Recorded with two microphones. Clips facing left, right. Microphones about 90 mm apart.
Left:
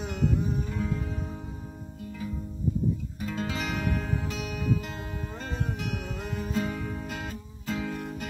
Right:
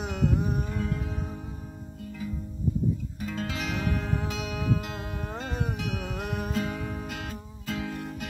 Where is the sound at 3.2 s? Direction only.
Centre (ahead or behind).